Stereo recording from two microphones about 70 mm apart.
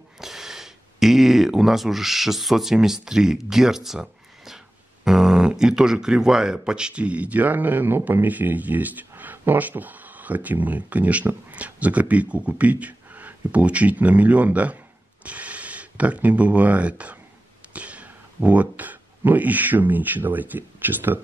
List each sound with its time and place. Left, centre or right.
0.2 s speech: centre; by 21.2 s right